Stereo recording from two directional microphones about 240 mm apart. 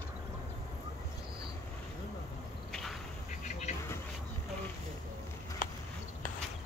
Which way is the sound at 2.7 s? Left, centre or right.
Centre.